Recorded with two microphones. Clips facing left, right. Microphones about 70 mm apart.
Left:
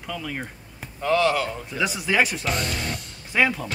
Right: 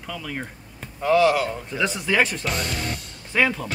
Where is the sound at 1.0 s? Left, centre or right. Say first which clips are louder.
Right 3 dB; centre.